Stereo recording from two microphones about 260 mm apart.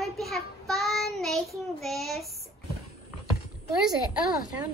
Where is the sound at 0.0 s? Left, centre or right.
Centre.